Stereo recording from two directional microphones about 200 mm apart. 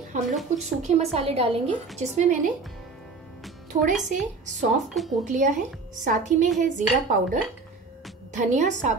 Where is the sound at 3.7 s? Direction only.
40° right (ahead or behind).